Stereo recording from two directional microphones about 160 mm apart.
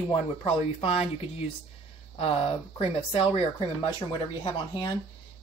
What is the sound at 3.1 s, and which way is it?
Speech, 35° left (ahead or behind).